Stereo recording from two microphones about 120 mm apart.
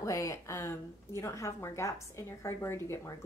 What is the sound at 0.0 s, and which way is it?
A woman's voice, 25° left (ahead or behind).